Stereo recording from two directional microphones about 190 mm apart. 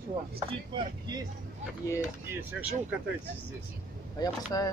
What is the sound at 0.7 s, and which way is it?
Speech, 25° right (ahead or behind).